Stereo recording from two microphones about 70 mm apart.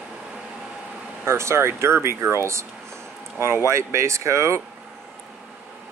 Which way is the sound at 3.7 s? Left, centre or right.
Right.